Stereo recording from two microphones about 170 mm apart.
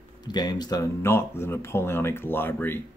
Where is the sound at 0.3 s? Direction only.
25° left (ahead or behind).